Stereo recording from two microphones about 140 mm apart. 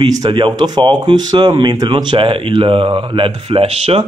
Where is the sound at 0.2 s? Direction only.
35° right (ahead or behind).